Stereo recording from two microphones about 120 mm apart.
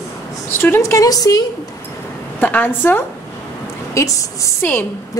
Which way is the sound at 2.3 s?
15° left (ahead or behind).